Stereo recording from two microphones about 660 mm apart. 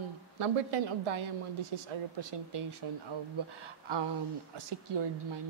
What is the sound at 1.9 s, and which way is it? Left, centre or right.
Speech, right.